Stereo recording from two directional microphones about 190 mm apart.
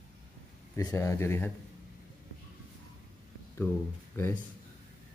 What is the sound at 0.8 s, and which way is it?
Speech, 15° left (ahead or behind).